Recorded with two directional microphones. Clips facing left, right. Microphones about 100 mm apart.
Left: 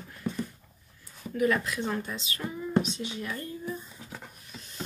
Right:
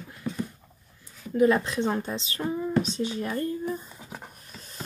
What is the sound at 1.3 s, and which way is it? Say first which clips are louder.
Speech: right 5 dB; 25° right (ahead or behind).